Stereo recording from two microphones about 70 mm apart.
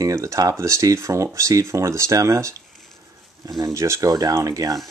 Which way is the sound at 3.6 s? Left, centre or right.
Right.